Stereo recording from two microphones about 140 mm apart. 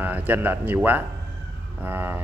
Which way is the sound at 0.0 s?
15° right (ahead or behind).